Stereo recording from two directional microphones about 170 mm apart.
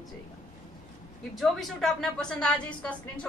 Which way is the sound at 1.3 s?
Centre (ahead or behind).